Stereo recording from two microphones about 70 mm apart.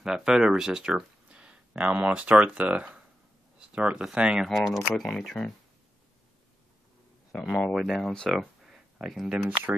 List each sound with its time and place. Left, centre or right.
0.0 s speech: centre
4.5 s speech: centre
7.3 s speech: centre